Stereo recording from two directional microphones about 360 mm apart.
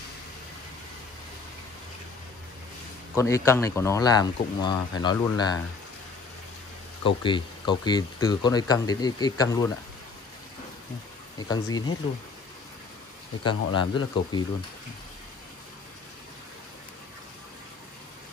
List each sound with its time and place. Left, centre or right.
3.2 s speech: centre
7.0 s speech: centre
11.3 s speech: centre
13.4 s speech: left
13.7 s speech: centre